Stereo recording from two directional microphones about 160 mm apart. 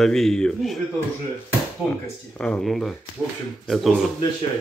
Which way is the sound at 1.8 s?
5° right (ahead or behind).